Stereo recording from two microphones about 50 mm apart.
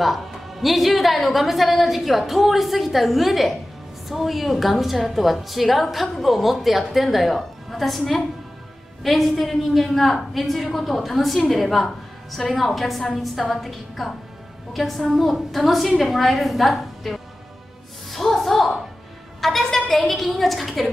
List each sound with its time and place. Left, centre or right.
0.0 s a woman's voice: centre
18.1 s music: centre
19.4 s a sound: centre
19.9 s a woman's voice: centre